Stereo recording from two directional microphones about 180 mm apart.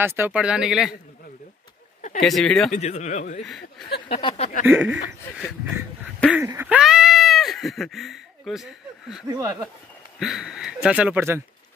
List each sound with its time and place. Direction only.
0.0 s speech: 10° right (ahead or behind)
2.0 s a sound: 40° left (ahead or behind)
2.2 s speech: centre (ahead or behind)
2.7 s speech: 40° left (ahead or behind)
4.1 s speech: 30° left (ahead or behind)
4.6 s speech: 10° right (ahead or behind)
6.3 s a sound: 15° right (ahead or behind)
9.3 s speech: 20° right (ahead or behind)
10.1 s speech: centre (ahead or behind)